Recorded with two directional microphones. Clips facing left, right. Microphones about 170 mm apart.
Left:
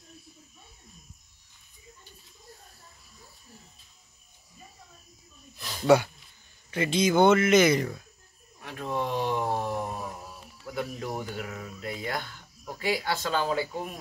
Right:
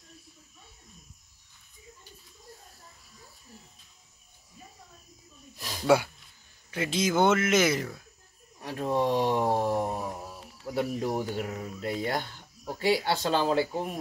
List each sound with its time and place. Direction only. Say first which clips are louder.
5.8 s speech: left 2 dB; 5° right (ahead or behind)
8.5 s a sound: right 4 dB; 35° right (ahead or behind)
10.0 s mantra: right 3 dB; 35° right (ahead or behind)
10.7 s speech: right 4 dB; 35° right (ahead or behind)